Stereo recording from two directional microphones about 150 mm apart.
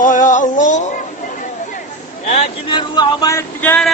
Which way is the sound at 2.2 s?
50° left (ahead or behind).